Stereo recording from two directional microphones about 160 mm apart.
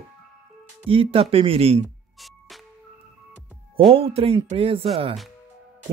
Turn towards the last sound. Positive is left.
turn(degrees=-35)  # may be behind; listen again after turning